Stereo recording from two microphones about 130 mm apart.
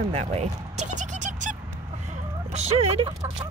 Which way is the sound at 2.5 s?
55° right (ahead or behind).